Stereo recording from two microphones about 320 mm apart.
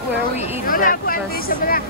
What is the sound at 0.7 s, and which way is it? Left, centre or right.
Hubbub, left.